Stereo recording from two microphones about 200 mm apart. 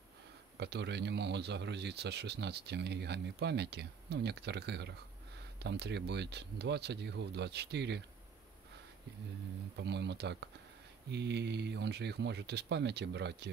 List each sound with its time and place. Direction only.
0.6 s a man's voice: 55° right (ahead or behind)
9.8 s a man's voice: 60° right (ahead or behind)